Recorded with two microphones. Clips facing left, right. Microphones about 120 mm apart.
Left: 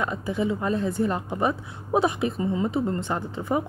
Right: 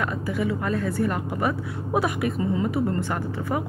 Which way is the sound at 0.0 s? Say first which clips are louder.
Even; 20° left (ahead or behind).